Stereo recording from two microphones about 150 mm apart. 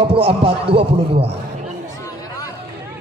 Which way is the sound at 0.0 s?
35° right (ahead or behind).